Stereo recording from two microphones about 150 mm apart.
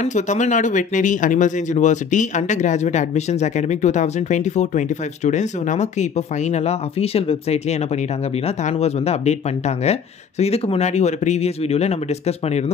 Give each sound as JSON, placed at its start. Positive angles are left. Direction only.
{"t": 0.0, "sound": "speech", "side_deg": 55}